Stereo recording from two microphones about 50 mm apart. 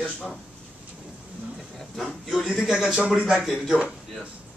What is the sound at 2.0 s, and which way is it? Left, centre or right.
Speech, centre.